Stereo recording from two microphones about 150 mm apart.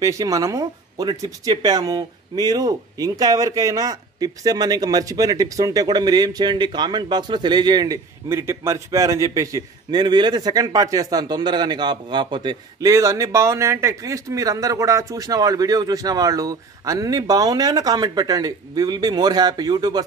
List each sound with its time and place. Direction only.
0.0 s speech: 20° right (ahead or behind)